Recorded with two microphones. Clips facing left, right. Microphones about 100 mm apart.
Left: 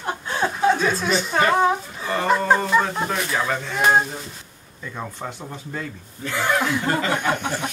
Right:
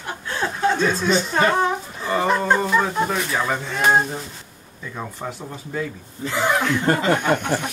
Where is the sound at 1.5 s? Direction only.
5° left (ahead or behind).